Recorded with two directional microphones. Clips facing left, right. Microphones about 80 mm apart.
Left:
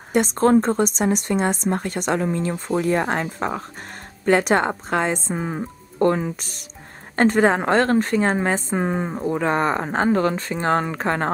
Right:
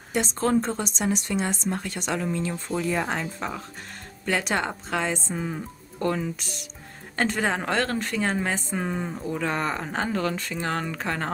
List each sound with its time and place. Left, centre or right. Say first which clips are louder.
0.1 s a woman's voice: left 7 dB; left